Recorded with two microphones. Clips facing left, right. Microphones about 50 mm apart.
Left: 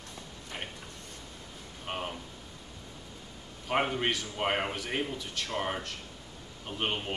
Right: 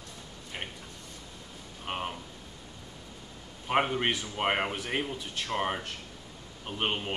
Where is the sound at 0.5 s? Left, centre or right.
Centre.